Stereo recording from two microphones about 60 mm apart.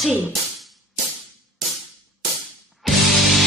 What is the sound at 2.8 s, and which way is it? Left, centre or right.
Music, centre.